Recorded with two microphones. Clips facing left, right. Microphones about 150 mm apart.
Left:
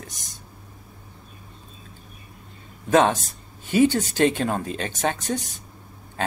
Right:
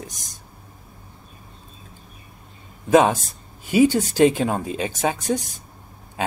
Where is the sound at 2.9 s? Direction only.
10° right (ahead or behind).